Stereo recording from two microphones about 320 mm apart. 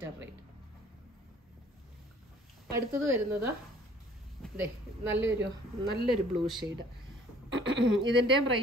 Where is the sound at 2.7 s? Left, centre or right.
Centre.